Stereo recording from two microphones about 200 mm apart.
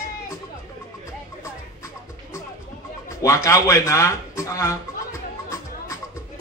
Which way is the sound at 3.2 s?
15° left (ahead or behind).